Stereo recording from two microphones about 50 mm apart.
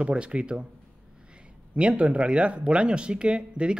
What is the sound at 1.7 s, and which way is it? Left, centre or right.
Speech, right.